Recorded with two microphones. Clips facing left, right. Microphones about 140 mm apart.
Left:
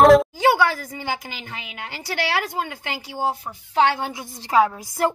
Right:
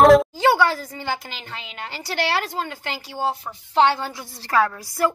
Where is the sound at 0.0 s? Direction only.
Centre (ahead or behind).